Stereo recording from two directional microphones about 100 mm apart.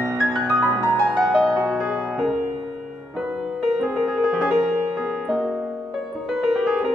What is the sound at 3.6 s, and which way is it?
Music, 5° right (ahead or behind).